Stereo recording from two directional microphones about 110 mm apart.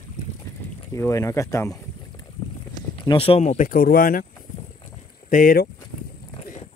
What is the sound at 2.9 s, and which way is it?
Speech, 50° left (ahead or behind).